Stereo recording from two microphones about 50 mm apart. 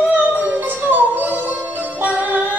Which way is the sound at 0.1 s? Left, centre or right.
Right.